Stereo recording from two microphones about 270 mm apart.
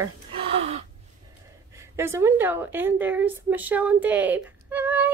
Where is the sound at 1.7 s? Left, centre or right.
Centre.